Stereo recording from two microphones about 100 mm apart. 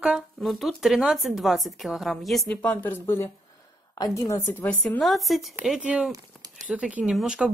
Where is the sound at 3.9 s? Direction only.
35° left (ahead or behind).